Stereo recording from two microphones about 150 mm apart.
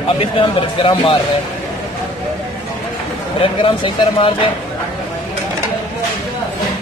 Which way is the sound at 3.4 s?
35° left (ahead or behind).